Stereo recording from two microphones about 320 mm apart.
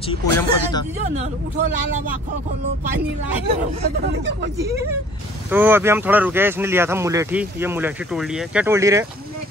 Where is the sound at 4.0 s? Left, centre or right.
Right.